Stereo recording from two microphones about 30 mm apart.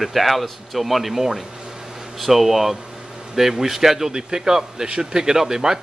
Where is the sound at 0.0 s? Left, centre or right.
Centre.